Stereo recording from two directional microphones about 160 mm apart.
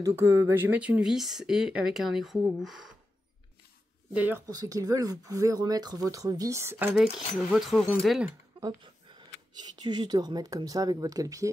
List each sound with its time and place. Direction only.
0.0 s speech: 15° right (ahead or behind)
4.1 s speech: 10° right (ahead or behind)
4.5 s speech: 20° right (ahead or behind)
7.0 s speech: centre (ahead or behind)
8.5 s speech: 25° right (ahead or behind)